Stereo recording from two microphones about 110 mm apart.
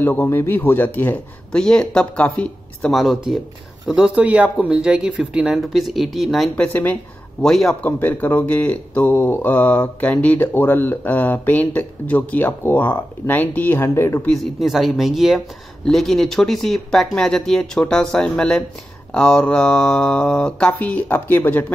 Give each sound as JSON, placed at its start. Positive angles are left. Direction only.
{"t": 0.0, "sound": "speech", "side_deg": 20}
{"t": 2.9, "sound": "speech", "side_deg": 0}
{"t": 6.6, "sound": "speech", "side_deg": 15}
{"t": 7.4, "sound": "speech", "side_deg": 5}
{"t": 8.0, "sound": "speech", "side_deg": 15}
{"t": 14.2, "sound": "speech", "side_deg": 5}